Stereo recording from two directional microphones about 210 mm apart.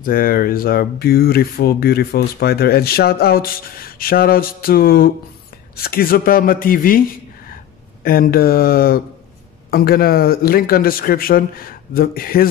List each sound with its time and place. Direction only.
0.0 s speech: 45° left (ahead or behind)
8.0 s speech: 45° left (ahead or behind)